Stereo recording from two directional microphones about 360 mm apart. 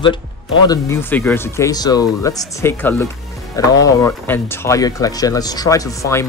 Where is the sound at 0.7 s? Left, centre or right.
Centre.